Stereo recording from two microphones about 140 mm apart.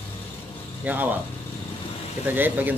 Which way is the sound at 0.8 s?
10° right (ahead or behind).